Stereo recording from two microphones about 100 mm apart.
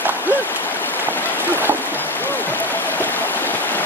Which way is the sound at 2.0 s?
20° left (ahead or behind).